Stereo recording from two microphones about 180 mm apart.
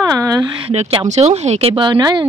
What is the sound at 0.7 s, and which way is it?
Speech, 40° right (ahead or behind).